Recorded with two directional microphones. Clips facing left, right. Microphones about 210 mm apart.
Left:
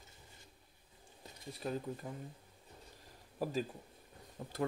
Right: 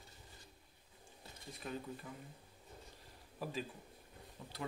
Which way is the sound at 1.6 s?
35° left (ahead or behind).